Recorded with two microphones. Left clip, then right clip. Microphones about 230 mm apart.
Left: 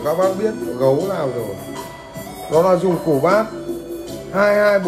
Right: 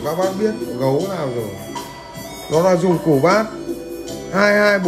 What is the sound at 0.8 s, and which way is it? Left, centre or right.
Speech, right.